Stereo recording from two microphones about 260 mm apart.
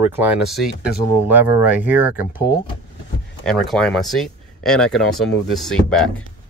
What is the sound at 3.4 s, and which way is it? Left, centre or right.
Speech, centre.